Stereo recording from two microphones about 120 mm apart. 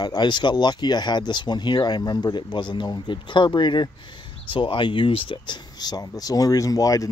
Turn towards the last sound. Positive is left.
turn(degrees=30)  # may be behind; listen again after turning